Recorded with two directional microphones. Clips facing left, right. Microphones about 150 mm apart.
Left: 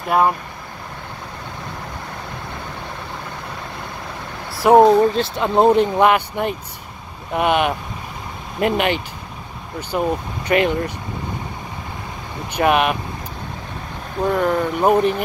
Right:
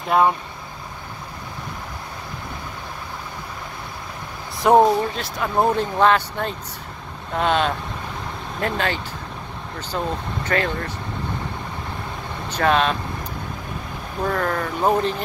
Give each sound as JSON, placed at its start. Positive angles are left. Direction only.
{"t": 0.1, "sound": "speech", "side_deg": 0}
{"t": 4.6, "sound": "speech", "side_deg": 5}
{"t": 5.1, "sound": "speech", "side_deg": 25}
{"t": 12.5, "sound": "speech", "side_deg": 15}
{"t": 14.3, "sound": "speech", "side_deg": 10}